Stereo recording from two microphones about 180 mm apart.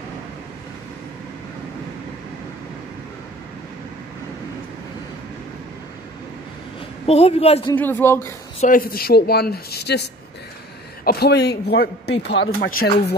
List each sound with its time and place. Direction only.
7.1 s a man's voice: 35° left (ahead or behind)
7.7 s speech: 10° left (ahead or behind)
8.5 s a man's voice: 50° left (ahead or behind); by 10.0 s 65° left (ahead or behind)
11.1 s a man's voice: 65° left (ahead or behind)
12.5 s speech: 55° left (ahead or behind)